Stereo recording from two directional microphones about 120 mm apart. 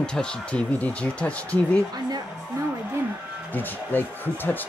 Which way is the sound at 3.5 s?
15° left (ahead or behind).